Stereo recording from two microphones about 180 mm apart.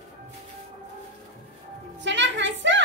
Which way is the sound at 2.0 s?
85° right.